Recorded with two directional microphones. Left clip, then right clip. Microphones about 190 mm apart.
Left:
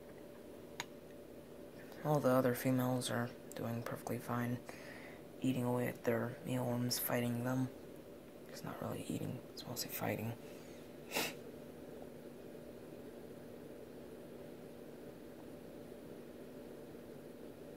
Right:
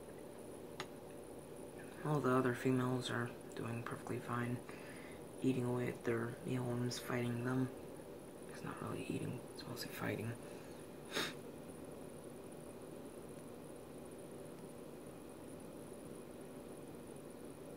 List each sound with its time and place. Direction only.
2.0 s speech: 50° left (ahead or behind)
5.7 s speech: 40° left (ahead or behind)
9.8 s speech: 40° left (ahead or behind)